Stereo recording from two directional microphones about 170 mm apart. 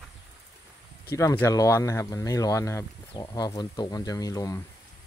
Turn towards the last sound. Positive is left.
turn(degrees=20)  # may be behind; listen again after turning